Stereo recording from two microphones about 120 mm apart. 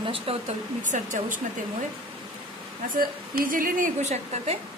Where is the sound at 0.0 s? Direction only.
50° right (ahead or behind).